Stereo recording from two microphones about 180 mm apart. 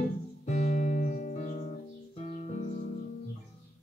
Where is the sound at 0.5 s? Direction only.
45° left (ahead or behind).